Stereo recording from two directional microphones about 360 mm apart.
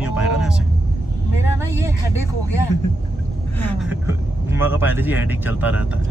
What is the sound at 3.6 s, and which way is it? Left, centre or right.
Speech, centre.